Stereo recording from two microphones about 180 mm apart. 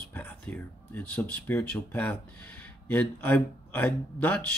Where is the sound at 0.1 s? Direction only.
10° left (ahead or behind).